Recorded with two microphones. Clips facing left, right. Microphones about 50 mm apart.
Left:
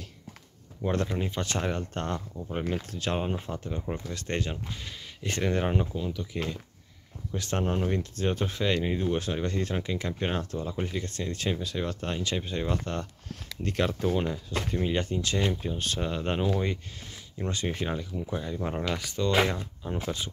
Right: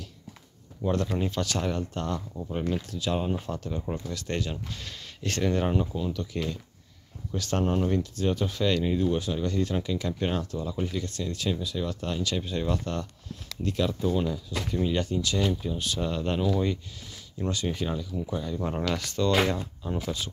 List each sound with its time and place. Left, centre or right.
1.0 s speech: centre
1.4 s speech: left
3.2 s speech: left
4.5 s speech: centre
5.9 s speech: centre
7.3 s speech: left
7.6 s speech: centre
7.9 s speech: left
13.6 s speech: left
14.1 s speech: left
16.0 s speech: left
20.0 s speech: left